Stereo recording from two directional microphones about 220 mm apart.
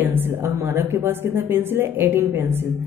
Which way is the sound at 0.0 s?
10° right (ahead or behind).